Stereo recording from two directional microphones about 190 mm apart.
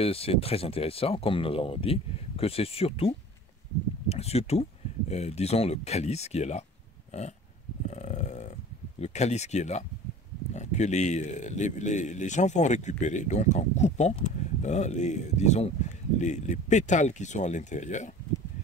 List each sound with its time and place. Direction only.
0.0 s speech: 30° left (ahead or behind)
4.1 s speech: 35° left (ahead or behind)
7.1 s burping: 35° left (ahead or behind)
7.9 s a sound: 35° left (ahead or behind)
9.0 s speech: 35° left (ahead or behind)